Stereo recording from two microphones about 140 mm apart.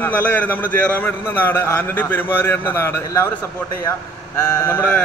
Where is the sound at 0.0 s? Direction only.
10° left (ahead or behind).